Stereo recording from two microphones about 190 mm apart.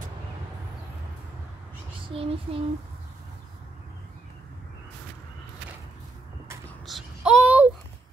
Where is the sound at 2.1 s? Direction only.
30° right (ahead or behind).